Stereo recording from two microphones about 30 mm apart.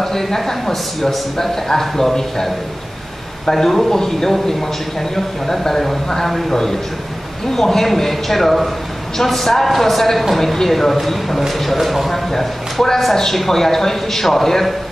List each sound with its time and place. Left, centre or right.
0.0 s a man's voice: centre
3.5 s a man's voice: centre
12.1 s a man's voice: centre